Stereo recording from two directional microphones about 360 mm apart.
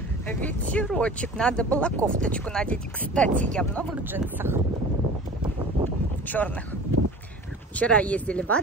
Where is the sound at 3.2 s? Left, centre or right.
Centre.